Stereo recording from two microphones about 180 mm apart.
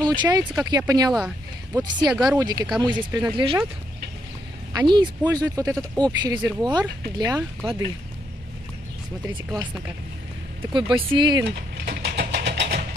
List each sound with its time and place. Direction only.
0.0 s speech: 25° right (ahead or behind)
1.1 s speech: 5° right (ahead or behind)
1.8 s speech: 20° right (ahead or behind)
4.7 s speech: 25° right (ahead or behind)
5.7 s speech: centre (ahead or behind)
6.0 s speech: 25° right (ahead or behind)
10.7 s speech: 25° right (ahead or behind)
11.5 s vehicle: 65° right (ahead or behind)